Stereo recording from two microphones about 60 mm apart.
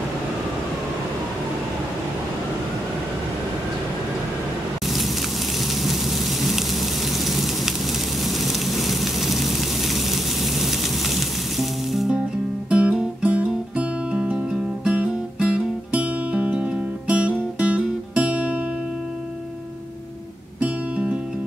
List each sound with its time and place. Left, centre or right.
7.2 s a sound: centre
12.6 s music: centre
20.6 s music: centre